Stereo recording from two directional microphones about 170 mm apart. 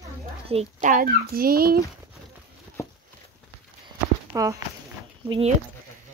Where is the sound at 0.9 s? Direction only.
60° right (ahead or behind).